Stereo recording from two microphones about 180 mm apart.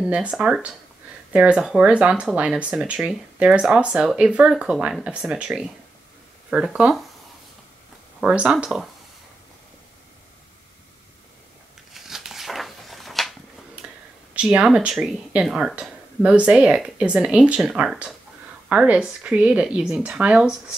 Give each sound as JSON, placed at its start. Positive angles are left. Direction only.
{"t": 0.0, "sound": "speech", "side_deg": -5}
{"t": 8.2, "sound": "speech", "side_deg": -5}
{"t": 11.9, "sound": "a sound", "side_deg": 0}
{"t": 14.3, "sound": "speech", "side_deg": -5}